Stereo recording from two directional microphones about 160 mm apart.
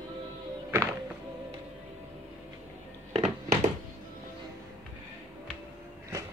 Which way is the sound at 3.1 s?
45° right (ahead or behind).